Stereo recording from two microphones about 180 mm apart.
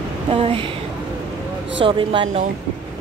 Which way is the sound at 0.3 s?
30° right (ahead or behind).